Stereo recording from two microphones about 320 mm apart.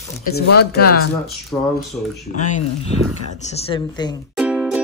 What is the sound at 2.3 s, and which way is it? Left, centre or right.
A woman's voice, left.